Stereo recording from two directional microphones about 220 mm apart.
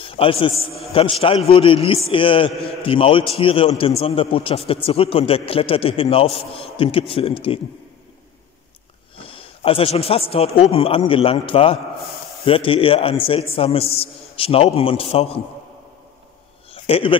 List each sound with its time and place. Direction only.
0.0 s a man's voice: 25° left (ahead or behind)
9.2 s a man's voice: 25° left (ahead or behind)
16.7 s a sound: 25° left (ahead or behind)